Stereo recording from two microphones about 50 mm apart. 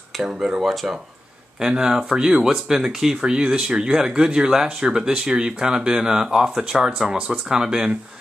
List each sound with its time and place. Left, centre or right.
0.3 s speech: centre
1.6 s speech: centre